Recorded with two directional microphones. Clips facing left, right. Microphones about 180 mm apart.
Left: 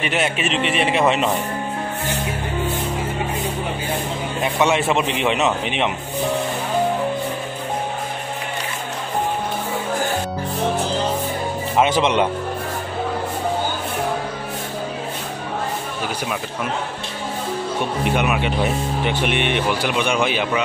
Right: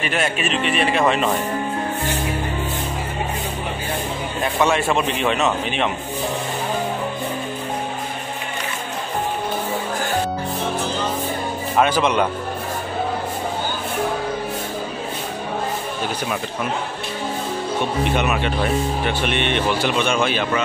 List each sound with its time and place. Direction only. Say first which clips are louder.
0.0 s a man's voice: left 1 dB; 20° left (ahead or behind)
4.4 s a man's voice: even; 20° left (ahead or behind)
11.7 s a man's voice: even; 20° left (ahead or behind)
18.1 s speech: even; 10° left (ahead or behind)